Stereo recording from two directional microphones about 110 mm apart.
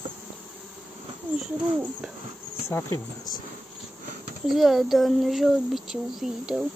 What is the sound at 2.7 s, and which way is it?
Speech, 20° left (ahead or behind).